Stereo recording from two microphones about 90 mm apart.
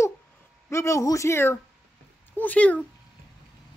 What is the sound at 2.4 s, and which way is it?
Speech, 15° left (ahead or behind).